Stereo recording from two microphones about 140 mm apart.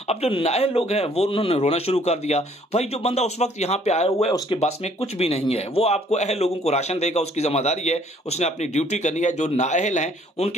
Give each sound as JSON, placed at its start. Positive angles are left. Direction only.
{"t": 0.1, "sound": "speech", "side_deg": 45}